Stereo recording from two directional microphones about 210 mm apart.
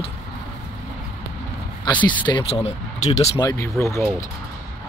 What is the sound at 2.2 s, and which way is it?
Speech, 25° left (ahead or behind).